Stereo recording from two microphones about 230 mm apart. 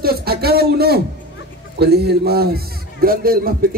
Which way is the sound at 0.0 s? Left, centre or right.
Right.